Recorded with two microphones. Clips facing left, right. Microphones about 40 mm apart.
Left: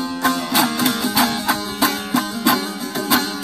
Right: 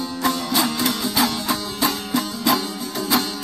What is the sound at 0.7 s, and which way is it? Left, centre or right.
Music, left.